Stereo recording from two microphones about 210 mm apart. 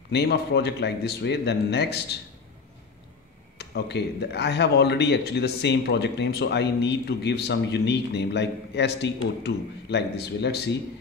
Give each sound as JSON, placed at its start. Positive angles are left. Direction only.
{"t": 0.1, "sound": "speech", "side_deg": 50}
{"t": 3.5, "sound": "speech", "side_deg": 50}